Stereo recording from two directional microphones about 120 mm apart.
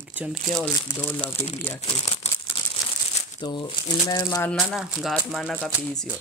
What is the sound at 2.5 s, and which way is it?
Crumpling, 55° left (ahead or behind).